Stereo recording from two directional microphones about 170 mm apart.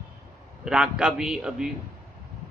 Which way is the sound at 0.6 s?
5° right (ahead or behind).